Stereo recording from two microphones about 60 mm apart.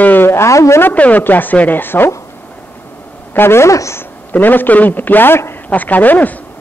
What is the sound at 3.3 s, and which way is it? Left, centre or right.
Speech, left.